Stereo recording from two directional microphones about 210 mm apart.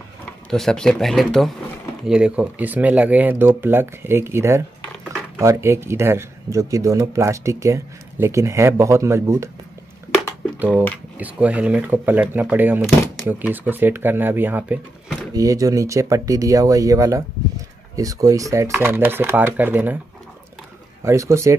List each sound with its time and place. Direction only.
0.2 s speech: centre (ahead or behind); by 9.5 s 15° right (ahead or behind)
11.1 s speech: 5° right (ahead or behind)
21.0 s speech: 15° right (ahead or behind)